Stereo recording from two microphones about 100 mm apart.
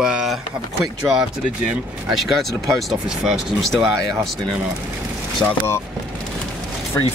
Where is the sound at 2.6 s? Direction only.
5° right (ahead or behind).